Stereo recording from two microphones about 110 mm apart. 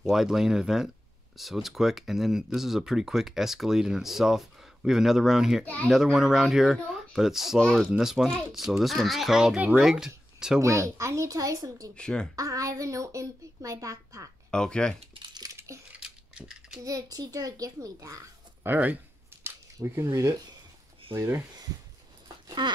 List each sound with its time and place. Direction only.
0.0 s speech: centre (ahead or behind)
10.6 s a woman's voice: 30° right (ahead or behind)
11.9 s speech: 10° left (ahead or behind)
12.4 s a woman's voice: 30° right (ahead or behind)
14.5 s speech: 5° left (ahead or behind)
15.5 s a sound: 25° right (ahead or behind)
16.0 s coin: 5° right (ahead or behind)
16.8 s a child's voice: 30° right (ahead or behind)
18.7 s speech: 15° right (ahead or behind)
19.4 s scissors: 25° right (ahead or behind)
21.1 s a woman's voice: 25° right (ahead or behind)
22.6 s speech: 45° right (ahead or behind)